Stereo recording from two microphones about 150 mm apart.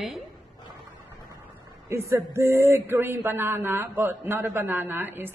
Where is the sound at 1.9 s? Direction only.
20° right (ahead or behind).